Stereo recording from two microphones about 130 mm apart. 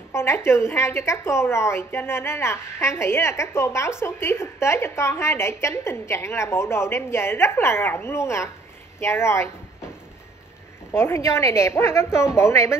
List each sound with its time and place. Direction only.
0.1 s a woman's voice: 20° left (ahead or behind)
10.9 s a woman's voice: 20° left (ahead or behind)